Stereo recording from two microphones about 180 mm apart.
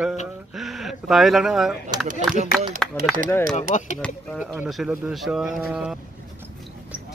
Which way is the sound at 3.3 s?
15° left (ahead or behind).